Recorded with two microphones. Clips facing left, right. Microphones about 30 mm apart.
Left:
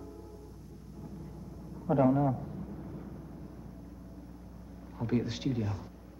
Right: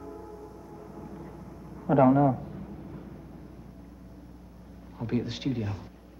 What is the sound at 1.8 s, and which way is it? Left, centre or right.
Speech, right.